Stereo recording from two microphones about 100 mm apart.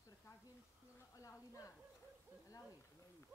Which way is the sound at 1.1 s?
30° left (ahead or behind).